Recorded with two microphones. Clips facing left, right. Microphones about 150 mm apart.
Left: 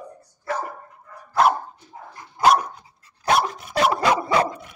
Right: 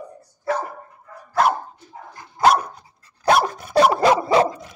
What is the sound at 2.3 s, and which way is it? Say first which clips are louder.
Dog: right 1 dB; 35° right (ahead or behind).